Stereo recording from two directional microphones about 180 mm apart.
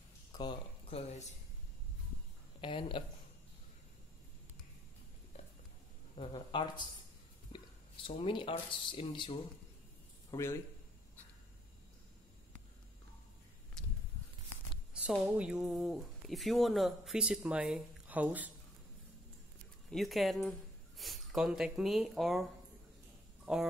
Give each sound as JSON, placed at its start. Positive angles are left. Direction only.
{"t": 0.3, "sound": "speech", "side_deg": 25}
{"t": 2.6, "sound": "speech", "side_deg": 30}
{"t": 6.1, "sound": "speech", "side_deg": 25}
{"t": 10.3, "sound": "a man's voice", "side_deg": 15}
{"t": 13.8, "sound": "a sound", "side_deg": 5}
{"t": 15.0, "sound": "speech", "side_deg": -5}
{"t": 19.9, "sound": "speech", "side_deg": 0}